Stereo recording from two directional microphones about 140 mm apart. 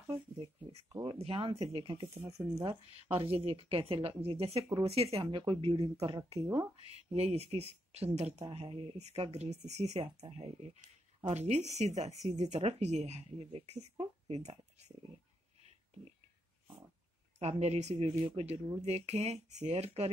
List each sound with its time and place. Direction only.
0.1 s speech: 45° right (ahead or behind)
6.8 s speech: 45° right (ahead or behind)
17.4 s speech: 50° right (ahead or behind)